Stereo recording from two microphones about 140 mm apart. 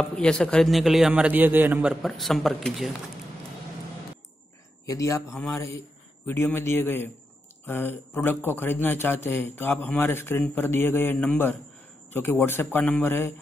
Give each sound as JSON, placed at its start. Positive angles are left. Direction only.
{"t": 0.0, "sound": "a man's voice", "side_deg": 10}
{"t": 4.8, "sound": "speech", "side_deg": 25}